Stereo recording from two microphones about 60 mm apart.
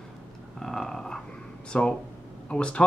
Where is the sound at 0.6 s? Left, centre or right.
Centre.